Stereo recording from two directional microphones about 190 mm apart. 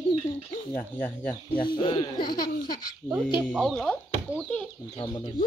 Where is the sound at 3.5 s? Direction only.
Centre (ahead or behind).